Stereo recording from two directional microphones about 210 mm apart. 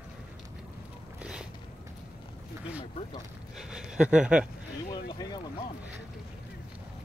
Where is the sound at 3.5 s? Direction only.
5° right (ahead or behind).